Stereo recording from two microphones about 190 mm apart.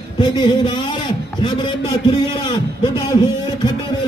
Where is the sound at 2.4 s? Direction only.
25° left (ahead or behind).